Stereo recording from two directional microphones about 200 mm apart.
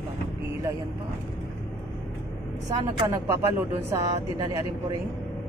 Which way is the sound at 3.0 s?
15° right (ahead or behind).